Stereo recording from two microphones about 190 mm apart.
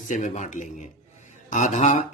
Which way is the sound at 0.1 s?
40° left (ahead or behind).